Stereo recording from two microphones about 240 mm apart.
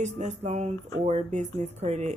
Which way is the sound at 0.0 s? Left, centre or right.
Right.